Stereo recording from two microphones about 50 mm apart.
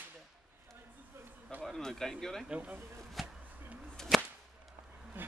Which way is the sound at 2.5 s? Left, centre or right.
Right.